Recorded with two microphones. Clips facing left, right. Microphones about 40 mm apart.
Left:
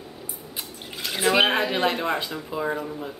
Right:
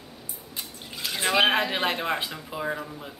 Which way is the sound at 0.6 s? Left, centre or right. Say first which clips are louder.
Left 1 dB; centre.